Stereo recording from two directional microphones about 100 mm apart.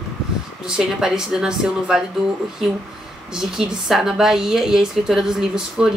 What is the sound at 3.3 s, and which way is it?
Speech, 5° right (ahead or behind).